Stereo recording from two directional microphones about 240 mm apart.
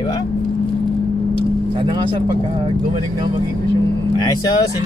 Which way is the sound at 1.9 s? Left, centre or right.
Centre.